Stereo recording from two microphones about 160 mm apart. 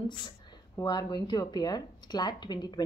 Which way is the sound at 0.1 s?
25° left (ahead or behind).